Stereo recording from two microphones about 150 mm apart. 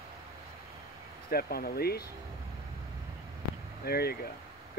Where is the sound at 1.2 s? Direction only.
90° left.